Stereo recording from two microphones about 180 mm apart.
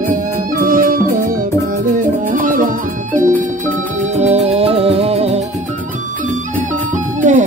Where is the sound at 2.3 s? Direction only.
50° right (ahead or behind).